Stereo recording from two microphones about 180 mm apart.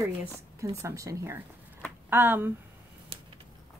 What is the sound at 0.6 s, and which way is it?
Speech, 15° right (ahead or behind).